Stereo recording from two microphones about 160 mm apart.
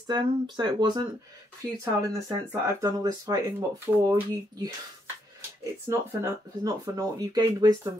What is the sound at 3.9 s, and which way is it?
Speech, 10° right (ahead or behind).